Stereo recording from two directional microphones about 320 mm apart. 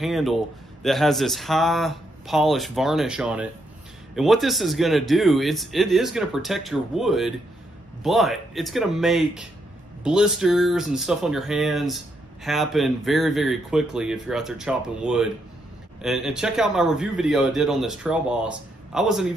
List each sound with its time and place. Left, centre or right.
0.0 s speech: centre